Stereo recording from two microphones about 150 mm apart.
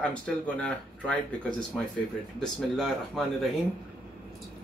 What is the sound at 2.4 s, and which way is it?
Speech, 5° left (ahead or behind).